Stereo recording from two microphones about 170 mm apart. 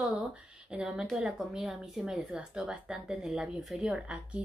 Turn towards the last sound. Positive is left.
turn(degrees=-5)  # may be behind; listen again after turning